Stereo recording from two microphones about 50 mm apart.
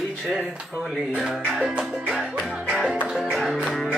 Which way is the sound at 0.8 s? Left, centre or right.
Centre.